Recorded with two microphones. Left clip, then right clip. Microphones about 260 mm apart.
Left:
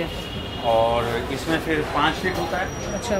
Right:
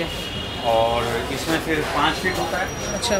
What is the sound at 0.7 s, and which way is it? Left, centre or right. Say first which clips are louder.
Speech: even; left.